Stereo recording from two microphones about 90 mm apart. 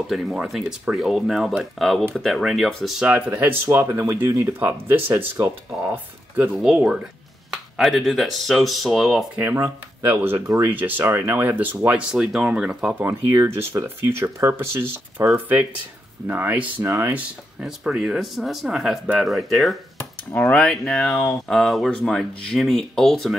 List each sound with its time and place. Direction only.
0.0 s speech: centre (ahead or behind)
3.1 s speech: 15° right (ahead or behind)
6.5 s speech: 5° right (ahead or behind)
7.5 s speech: centre (ahead or behind)
9.3 s speech: 20° right (ahead or behind)
12.1 s speech: 5° right (ahead or behind)
13.0 s speech: 25° right (ahead or behind)
16.8 s speech: 30° right (ahead or behind)
17.1 s speech: 15° right (ahead or behind); by 19.8 s centre (ahead or behind)
20.0 s a sound: 20° left (ahead or behind)
20.5 s speech: 10° left (ahead or behind)